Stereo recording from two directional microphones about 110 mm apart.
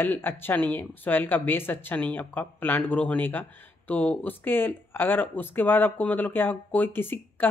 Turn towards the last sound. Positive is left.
turn(degrees=20)  # may be behind; listen again after turning